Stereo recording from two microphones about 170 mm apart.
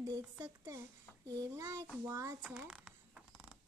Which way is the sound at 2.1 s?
20° right (ahead or behind).